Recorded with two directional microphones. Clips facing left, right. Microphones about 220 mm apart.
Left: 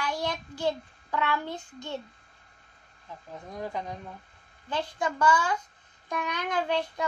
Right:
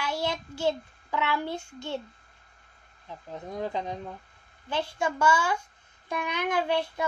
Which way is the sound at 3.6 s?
25° right (ahead or behind).